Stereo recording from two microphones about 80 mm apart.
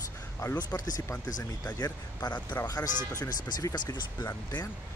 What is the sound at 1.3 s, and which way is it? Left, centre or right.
Speech, left.